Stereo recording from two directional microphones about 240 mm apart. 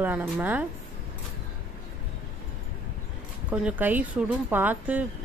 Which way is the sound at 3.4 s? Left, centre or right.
Centre.